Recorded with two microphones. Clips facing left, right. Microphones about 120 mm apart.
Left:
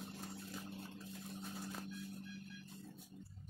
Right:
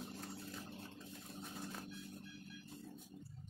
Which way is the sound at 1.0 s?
Centre (ahead or behind).